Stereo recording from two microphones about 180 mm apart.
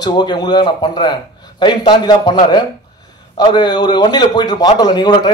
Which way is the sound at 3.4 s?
25° left (ahead or behind).